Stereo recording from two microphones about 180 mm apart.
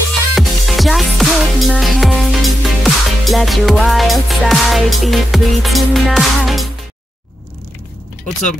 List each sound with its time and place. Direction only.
0.3 s music: centre (ahead or behind)